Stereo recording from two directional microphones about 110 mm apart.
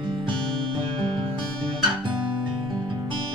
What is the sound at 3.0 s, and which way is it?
Music, 45° right (ahead or behind).